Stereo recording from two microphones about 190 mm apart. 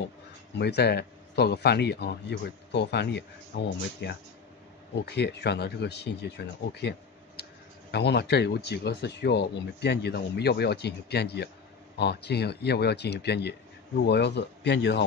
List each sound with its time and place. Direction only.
0.6 s a man's voice: 60° left (ahead or behind)